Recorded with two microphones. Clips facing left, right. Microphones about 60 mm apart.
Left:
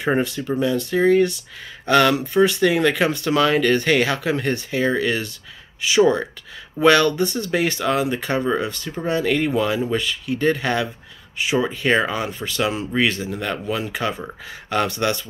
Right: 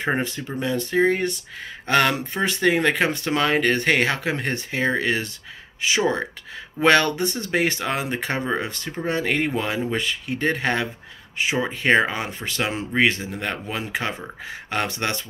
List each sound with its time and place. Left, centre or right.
0.6 s speech: right